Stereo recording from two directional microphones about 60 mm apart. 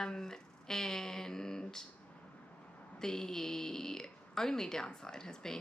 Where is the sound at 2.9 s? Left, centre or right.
Centre.